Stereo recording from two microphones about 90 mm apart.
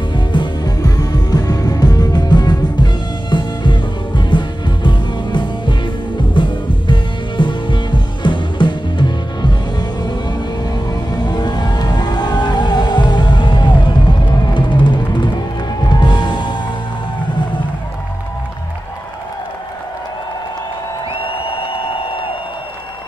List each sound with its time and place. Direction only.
0.1 s music: 60° left (ahead or behind)
15.9 s music: 55° left (ahead or behind)
21.1 s music: 85° left